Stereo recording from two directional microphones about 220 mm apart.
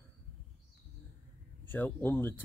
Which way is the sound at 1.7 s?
10° left (ahead or behind).